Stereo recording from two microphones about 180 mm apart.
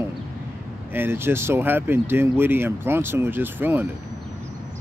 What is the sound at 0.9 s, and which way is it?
Speech, 10° right (ahead or behind).